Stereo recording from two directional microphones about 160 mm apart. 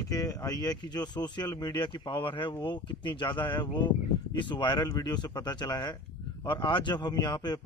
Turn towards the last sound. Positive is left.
turn(degrees=25)  # may be behind; listen again after turning